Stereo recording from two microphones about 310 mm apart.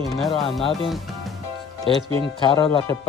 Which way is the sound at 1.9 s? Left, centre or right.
Centre.